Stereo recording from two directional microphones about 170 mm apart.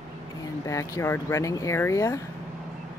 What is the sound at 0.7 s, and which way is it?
Speech, 20° left (ahead or behind).